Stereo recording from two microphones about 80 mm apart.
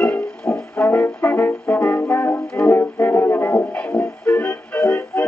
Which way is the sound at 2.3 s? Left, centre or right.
Centre.